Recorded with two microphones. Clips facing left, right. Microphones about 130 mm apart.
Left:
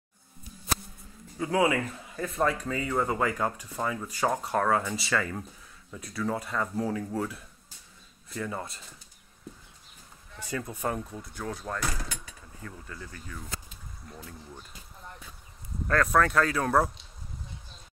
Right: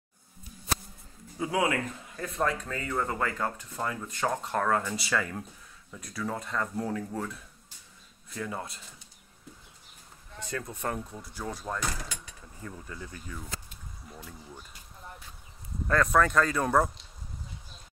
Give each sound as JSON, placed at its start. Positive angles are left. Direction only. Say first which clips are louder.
{"t": 1.5, "sound": "speech", "louder": "left 3 dB", "side_deg": 0}
{"t": 10.4, "sound": "speech", "louder": "left 2 dB", "side_deg": 5}
{"t": 12.6, "sound": "speech", "louder": "right 1 dB", "side_deg": -20}
{"t": 14.0, "sound": "speech", "louder": "left 1 dB", "side_deg": 0}